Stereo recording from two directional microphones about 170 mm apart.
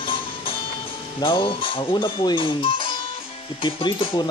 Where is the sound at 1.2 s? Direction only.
30° left (ahead or behind).